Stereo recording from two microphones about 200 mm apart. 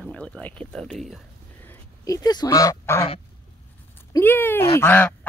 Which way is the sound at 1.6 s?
15° left (ahead or behind).